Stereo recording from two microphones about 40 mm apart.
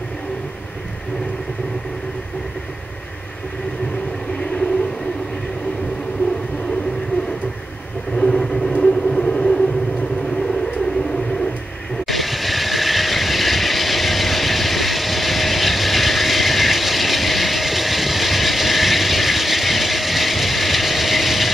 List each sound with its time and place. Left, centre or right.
8.2 s vehicle: centre
12.1 s vehicle: centre